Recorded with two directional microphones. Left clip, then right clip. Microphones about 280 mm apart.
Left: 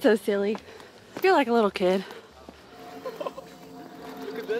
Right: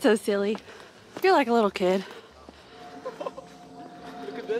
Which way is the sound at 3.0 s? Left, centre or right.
Centre.